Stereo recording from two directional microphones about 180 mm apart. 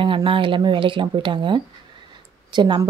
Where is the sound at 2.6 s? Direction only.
25° right (ahead or behind).